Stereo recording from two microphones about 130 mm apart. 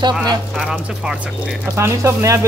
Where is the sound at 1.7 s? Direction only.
20° right (ahead or behind).